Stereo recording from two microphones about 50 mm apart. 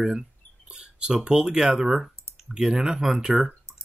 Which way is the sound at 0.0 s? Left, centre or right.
Centre.